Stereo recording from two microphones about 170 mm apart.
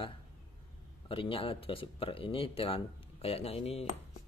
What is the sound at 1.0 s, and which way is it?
Speech, 30° left (ahead or behind).